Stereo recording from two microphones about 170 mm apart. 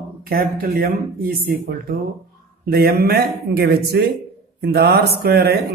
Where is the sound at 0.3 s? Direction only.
60° right (ahead or behind).